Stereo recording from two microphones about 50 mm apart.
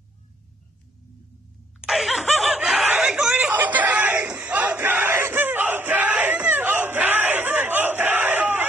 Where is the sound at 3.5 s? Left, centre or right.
Right.